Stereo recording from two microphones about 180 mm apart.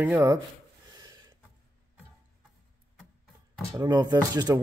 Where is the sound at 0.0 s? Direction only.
10° right (ahead or behind).